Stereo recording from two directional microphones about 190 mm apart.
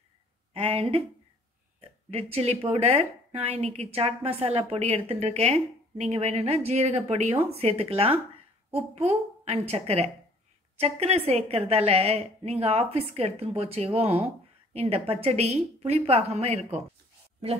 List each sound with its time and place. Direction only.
0.5 s speech: 30° right (ahead or behind)